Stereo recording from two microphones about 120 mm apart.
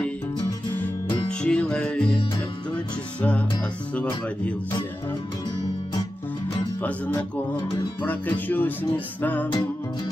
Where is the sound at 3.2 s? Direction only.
10° left (ahead or behind).